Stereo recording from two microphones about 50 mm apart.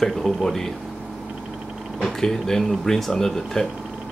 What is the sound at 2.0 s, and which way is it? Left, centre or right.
Speech, centre.